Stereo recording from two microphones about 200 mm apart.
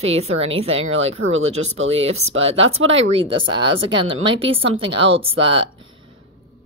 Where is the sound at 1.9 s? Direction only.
30° right (ahead or behind).